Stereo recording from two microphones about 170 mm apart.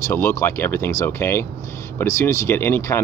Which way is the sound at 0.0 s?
15° left (ahead or behind).